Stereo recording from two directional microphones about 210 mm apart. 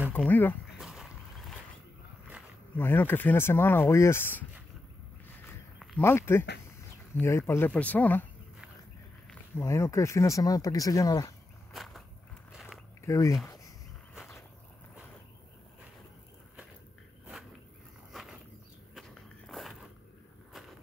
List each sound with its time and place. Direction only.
0.1 s speech: 10° left (ahead or behind)
0.7 s a sound: centre (ahead or behind)
2.8 s speech: 10° left (ahead or behind)
5.9 s speech: 10° left (ahead or behind)
9.3 s speech: 15° left (ahead or behind)
11.7 s walk: centre (ahead or behind)
12.5 s biting: centre (ahead or behind)
13.0 s speech: 15° left (ahead or behind)
14.1 s walk: centre (ahead or behind)
18.1 s a sound: centre (ahead or behind)
18.9 s walk: centre (ahead or behind)